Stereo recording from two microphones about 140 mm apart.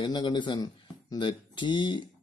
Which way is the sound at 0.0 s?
30° left (ahead or behind).